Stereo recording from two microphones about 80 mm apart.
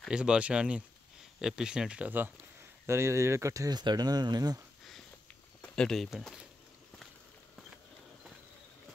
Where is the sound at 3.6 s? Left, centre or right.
Right.